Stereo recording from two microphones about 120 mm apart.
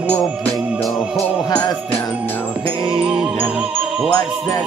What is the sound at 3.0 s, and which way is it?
Music, 10° right (ahead or behind).